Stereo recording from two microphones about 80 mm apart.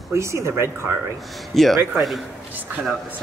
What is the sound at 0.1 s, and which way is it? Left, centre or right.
Speech, right.